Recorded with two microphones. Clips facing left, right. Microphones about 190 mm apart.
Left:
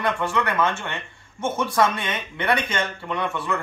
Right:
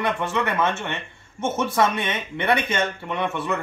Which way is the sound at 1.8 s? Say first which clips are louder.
Left 1 dB; 20° right (ahead or behind).